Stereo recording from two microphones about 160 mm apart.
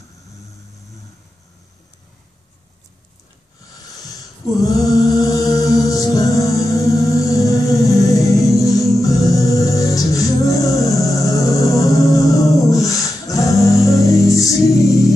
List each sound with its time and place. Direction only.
4.6 s music: 20° left (ahead or behind)